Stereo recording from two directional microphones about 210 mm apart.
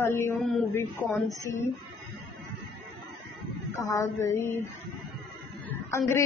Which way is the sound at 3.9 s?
15° left (ahead or behind).